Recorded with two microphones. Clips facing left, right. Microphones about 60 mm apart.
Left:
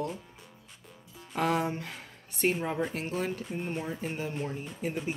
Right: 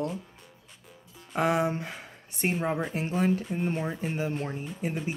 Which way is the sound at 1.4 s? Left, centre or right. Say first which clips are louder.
Right 3 dB; right.